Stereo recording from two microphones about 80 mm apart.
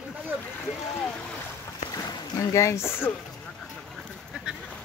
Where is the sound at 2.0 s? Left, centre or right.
Left.